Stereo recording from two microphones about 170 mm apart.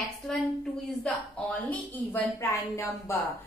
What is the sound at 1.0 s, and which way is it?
A woman's voice, 5° left (ahead or behind).